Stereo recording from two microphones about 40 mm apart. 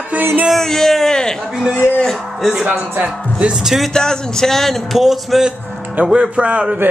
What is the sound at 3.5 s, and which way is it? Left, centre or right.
Speech, centre.